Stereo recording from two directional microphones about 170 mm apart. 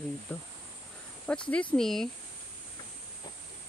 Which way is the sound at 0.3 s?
15° left (ahead or behind).